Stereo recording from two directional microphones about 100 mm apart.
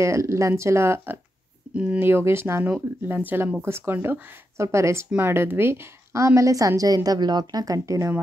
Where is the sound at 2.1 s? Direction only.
25° right (ahead or behind).